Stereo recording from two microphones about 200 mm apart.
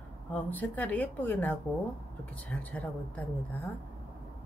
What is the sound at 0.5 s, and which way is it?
Speech, 10° left (ahead or behind).